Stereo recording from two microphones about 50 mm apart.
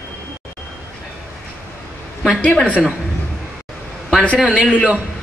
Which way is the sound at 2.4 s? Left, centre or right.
Left.